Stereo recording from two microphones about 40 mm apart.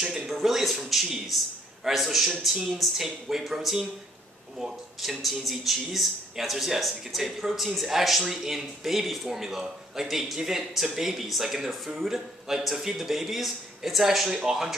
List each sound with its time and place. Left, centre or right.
0.3 s a man's voice: centre